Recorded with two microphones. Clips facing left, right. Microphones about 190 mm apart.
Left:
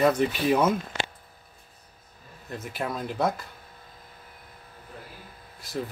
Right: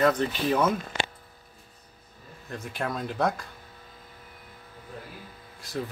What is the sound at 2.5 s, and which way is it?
Speech, 5° left (ahead or behind).